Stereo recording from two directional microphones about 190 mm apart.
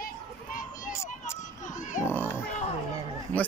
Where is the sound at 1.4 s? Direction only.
40° left (ahead or behind).